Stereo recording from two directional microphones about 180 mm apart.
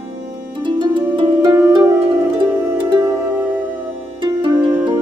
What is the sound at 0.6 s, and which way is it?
Harp, 25° right (ahead or behind).